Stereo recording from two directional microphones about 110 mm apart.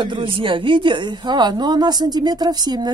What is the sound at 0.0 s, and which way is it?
A woman's voice, 50° right (ahead or behind).